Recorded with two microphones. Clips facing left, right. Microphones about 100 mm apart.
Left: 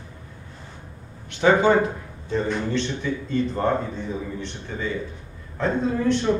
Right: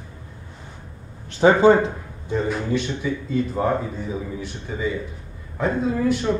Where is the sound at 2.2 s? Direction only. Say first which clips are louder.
Right 1 dB; 10° right (ahead or behind).